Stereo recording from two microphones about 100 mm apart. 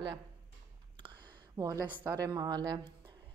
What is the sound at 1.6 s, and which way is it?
Speech, 40° right (ahead or behind).